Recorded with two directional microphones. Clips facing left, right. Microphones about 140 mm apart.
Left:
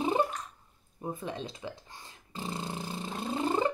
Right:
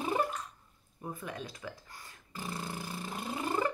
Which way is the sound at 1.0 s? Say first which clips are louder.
Left 4 dB; 25° left (ahead or behind).